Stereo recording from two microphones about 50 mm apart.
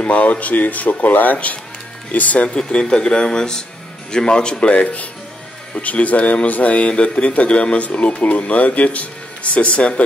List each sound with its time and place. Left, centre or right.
0.0 s speech: left
2.5 s speech: centre